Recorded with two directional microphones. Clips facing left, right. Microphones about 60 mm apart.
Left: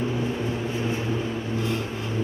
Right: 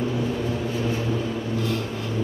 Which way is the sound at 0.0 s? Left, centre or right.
Left.